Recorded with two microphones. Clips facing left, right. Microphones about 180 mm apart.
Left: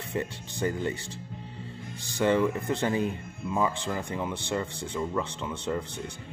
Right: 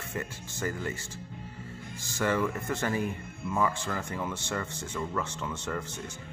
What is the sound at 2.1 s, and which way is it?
Speech, 20° left (ahead or behind).